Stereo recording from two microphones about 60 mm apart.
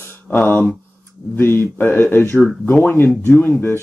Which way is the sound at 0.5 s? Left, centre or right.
Left.